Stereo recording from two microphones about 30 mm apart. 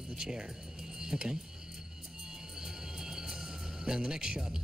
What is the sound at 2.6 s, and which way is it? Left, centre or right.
Music, centre.